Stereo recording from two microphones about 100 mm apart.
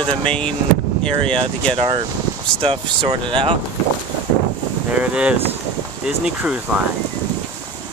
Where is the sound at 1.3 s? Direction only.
65° right (ahead or behind).